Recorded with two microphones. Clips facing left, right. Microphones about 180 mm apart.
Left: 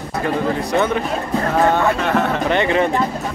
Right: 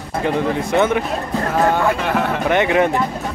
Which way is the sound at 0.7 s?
15° right (ahead or behind).